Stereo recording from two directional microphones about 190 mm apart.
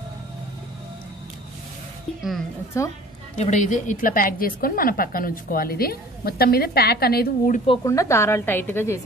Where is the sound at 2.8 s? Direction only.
15° left (ahead or behind).